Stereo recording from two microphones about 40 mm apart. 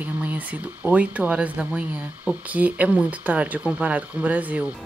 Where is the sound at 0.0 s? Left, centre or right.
Right.